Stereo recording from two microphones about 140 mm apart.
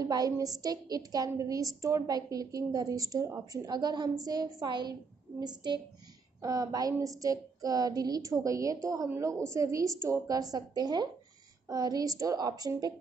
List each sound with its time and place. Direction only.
0.0 s a woman's voice: 25° right (ahead or behind)